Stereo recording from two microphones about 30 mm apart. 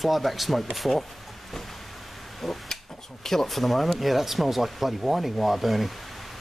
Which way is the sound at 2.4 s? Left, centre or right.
Centre.